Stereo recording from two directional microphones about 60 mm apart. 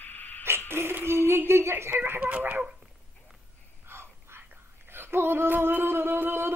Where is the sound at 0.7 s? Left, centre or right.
Right.